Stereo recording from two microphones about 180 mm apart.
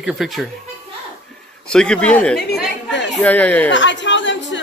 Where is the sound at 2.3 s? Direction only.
60° left (ahead or behind).